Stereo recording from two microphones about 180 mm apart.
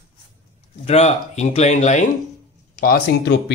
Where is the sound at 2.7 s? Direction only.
55° left (ahead or behind).